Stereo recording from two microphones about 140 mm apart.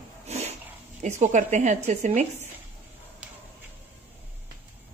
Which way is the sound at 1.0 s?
60° right (ahead or behind).